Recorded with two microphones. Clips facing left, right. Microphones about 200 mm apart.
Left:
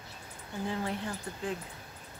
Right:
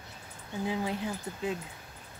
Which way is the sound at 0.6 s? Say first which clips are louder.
Right 2 dB; 10° right (ahead or behind).